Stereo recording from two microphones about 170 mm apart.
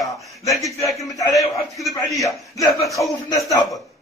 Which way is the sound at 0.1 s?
20° left (ahead or behind).